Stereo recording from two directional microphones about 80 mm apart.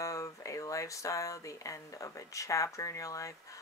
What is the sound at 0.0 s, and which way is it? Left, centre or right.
Speech, left.